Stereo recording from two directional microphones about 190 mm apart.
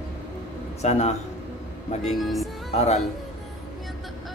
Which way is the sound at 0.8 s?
35° left (ahead or behind).